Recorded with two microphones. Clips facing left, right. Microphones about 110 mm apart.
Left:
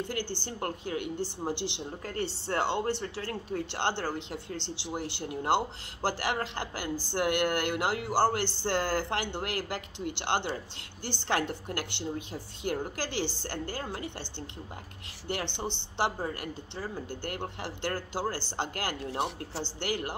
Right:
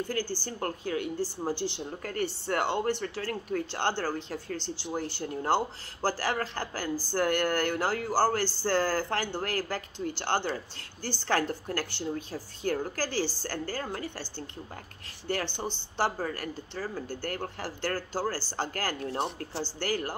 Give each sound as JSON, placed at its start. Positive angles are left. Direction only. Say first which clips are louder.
{"t": 0.0, "sound": "a woman's voice", "louder": "right 2 dB", "side_deg": 25}
{"t": 15.2, "sound": "a woman's voice", "louder": "right 2 dB", "side_deg": 20}